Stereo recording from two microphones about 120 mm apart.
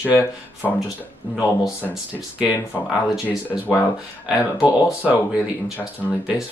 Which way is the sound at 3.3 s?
15° left (ahead or behind).